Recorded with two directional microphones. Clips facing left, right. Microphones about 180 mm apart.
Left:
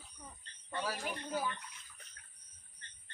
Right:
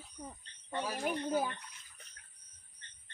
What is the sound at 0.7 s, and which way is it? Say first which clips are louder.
Speech: right 1 dB; 20° right (ahead or behind).